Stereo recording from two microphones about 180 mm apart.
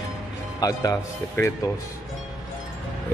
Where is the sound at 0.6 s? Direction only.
20° left (ahead or behind).